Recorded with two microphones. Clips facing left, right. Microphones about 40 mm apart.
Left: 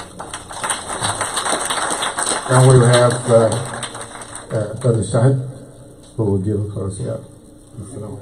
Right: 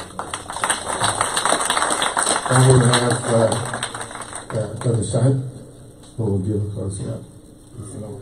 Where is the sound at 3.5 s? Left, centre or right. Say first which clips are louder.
Even; right.